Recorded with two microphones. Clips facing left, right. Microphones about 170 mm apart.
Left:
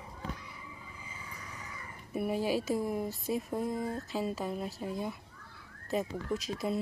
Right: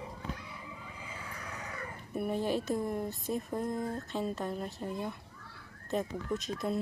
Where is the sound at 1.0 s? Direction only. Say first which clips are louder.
Right 5 dB; 70° right (ahead or behind).